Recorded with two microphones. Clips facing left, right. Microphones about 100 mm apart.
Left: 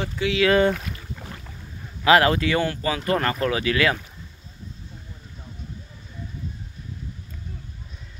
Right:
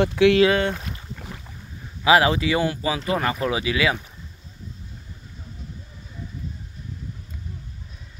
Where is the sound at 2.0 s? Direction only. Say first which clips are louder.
Even; 10° right (ahead or behind).